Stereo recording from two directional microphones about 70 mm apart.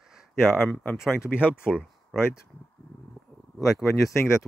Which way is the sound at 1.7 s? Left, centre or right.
Centre.